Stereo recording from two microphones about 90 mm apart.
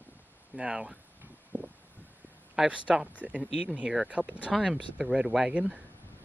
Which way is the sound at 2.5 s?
10° right (ahead or behind).